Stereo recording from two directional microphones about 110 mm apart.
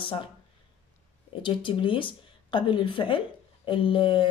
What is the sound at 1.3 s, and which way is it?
Speech, 50° left (ahead or behind).